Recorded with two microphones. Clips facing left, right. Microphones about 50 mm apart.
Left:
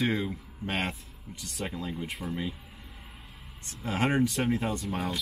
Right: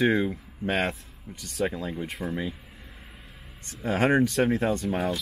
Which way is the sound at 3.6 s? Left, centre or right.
Centre.